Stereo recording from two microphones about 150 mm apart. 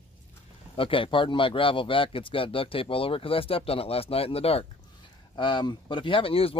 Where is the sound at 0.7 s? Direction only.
35° left (ahead or behind).